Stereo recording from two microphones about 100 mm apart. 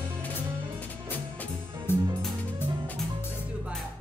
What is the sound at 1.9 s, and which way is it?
Music, 20° left (ahead or behind).